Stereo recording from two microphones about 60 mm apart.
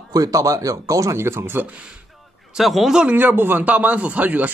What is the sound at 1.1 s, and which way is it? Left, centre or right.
Speech, right.